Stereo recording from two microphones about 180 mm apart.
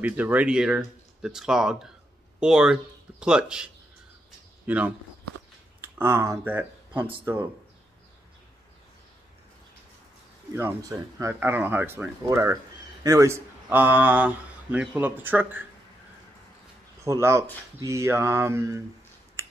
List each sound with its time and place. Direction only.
0.0 s speech: 10° right (ahead or behind)
5.9 s speech: 15° right (ahead or behind)
10.5 s speech: 15° right (ahead or behind)
17.0 s speech: 15° right (ahead or behind)